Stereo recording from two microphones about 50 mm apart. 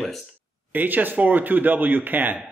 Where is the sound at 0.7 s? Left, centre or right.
Right.